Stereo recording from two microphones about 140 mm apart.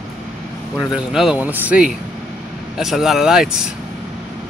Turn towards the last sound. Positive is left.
turn(degrees=-5)  # may be behind; listen again after turning